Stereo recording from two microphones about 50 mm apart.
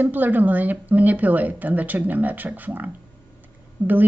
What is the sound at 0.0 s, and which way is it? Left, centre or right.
Speech, right.